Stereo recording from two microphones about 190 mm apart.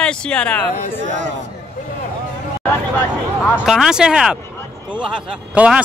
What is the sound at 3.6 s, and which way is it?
A man's voice, centre (ahead or behind).